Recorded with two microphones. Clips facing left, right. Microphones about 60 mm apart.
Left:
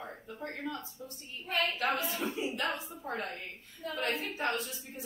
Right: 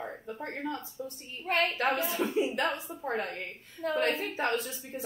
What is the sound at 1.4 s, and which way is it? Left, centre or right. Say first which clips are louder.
Speech: right 4 dB; right.